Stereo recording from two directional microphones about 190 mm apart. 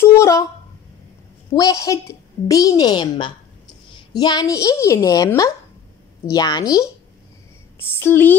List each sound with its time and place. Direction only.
0.0 s a sound: 15° left (ahead or behind)
1.5 s a woman's voice: 20° left (ahead or behind)
8.0 s a woman's voice: 10° left (ahead or behind)